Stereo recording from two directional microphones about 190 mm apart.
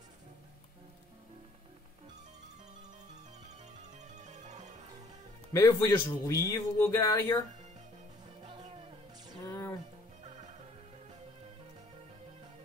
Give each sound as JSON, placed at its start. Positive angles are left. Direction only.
{"t": 4.2, "sound": "music", "side_deg": -40}
{"t": 5.5, "sound": "a man's voice", "side_deg": 15}
{"t": 9.5, "sound": "music", "side_deg": 10}